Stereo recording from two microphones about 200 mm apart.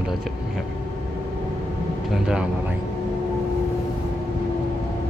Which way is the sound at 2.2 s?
5° right (ahead or behind).